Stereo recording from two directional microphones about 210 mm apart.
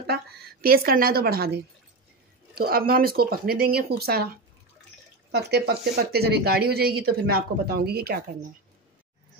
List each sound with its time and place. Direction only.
0.0 s speech: 45° right (ahead or behind)